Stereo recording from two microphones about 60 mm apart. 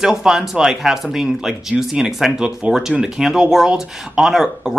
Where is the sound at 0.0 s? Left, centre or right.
Centre.